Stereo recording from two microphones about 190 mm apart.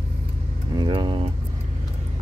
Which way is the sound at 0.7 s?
25° right (ahead or behind).